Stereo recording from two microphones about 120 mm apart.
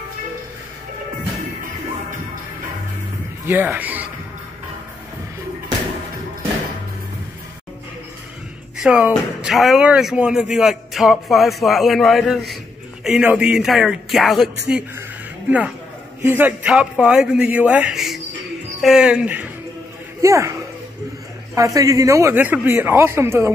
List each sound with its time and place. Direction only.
3.4 s speech: 15° right (ahead or behind)
8.7 s speech: 5° right (ahead or behind)
16.2 s a man's voice: 15° right (ahead or behind)
20.2 s speech: 25° right (ahead or behind)
21.5 s a man's voice: 30° right (ahead or behind)